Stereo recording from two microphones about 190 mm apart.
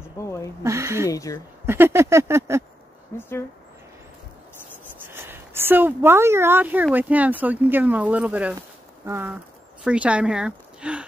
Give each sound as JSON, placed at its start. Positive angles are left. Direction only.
{"t": 0.2, "sound": "speech", "side_deg": 15}
{"t": 0.7, "sound": "speech", "side_deg": -15}
{"t": 1.1, "sound": "speech", "side_deg": 15}
{"t": 1.7, "sound": "speech", "side_deg": -15}
{"t": 3.2, "sound": "speech", "side_deg": 10}
{"t": 5.0, "sound": "speech", "side_deg": -10}